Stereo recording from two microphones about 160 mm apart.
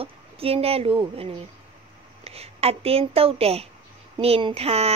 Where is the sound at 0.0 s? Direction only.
35° right (ahead or behind).